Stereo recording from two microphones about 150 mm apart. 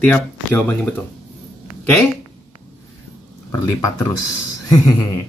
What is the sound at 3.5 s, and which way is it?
Speech, 20° left (ahead or behind).